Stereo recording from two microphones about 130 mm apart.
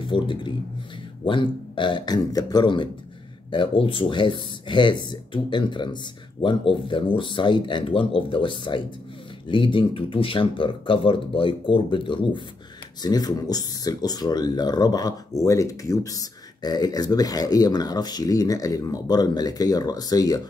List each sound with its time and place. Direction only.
0.0 s speech: 40° left (ahead or behind)